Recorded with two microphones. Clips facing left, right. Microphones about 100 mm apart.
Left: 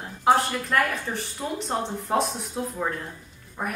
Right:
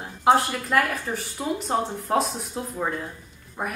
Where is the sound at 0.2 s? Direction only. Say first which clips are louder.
Right 1 dB; 5° right (ahead or behind).